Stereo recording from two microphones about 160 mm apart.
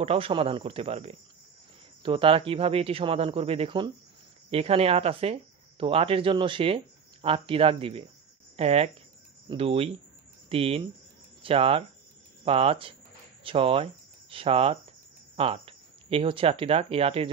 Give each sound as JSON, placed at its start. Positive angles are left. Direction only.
{"t": 0.0, "sound": "speech", "side_deg": -35}